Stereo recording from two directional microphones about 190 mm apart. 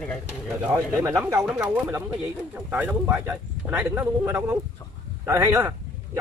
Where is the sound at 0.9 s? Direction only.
15° right (ahead or behind).